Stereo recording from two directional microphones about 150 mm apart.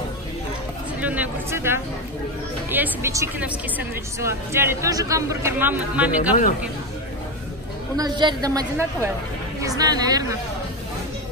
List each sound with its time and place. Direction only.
1.0 s a woman's voice: 10° right (ahead or behind)
8.0 s a woman's voice: 25° right (ahead or behind)